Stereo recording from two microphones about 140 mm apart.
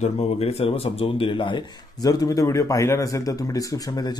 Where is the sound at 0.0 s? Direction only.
50° left (ahead or behind).